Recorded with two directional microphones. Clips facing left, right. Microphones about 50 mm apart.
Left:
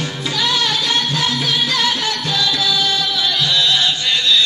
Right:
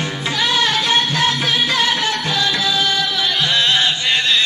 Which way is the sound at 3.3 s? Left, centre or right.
Right.